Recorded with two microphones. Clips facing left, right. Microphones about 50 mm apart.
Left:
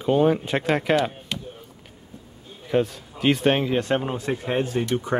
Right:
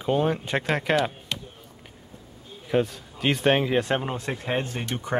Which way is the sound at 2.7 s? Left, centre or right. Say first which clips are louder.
Left 2 dB; centre.